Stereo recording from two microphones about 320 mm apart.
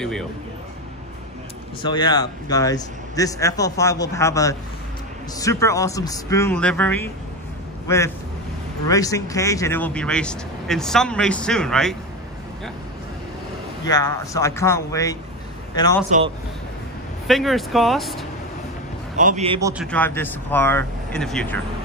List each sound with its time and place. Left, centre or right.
0.0 s speech: centre
1.8 s speech: centre
8.8 s speech: centre
13.8 s speech: centre
17.3 s speech: centre
19.1 s a man's voice: right
19.8 s speech: centre